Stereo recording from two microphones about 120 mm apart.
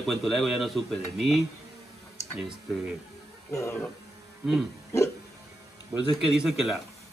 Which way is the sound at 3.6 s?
20° left (ahead or behind).